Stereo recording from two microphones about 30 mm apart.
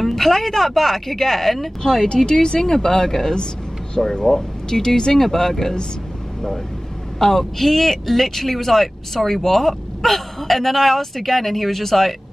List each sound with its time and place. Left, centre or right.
0.0 s speech: centre
1.8 s speech: left
5.2 s speech: centre
7.2 s speech: centre